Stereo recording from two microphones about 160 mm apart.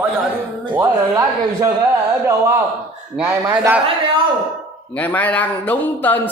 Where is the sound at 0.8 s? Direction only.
20° right (ahead or behind).